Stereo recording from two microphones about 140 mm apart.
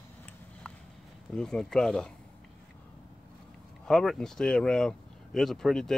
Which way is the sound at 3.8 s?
5° left (ahead or behind).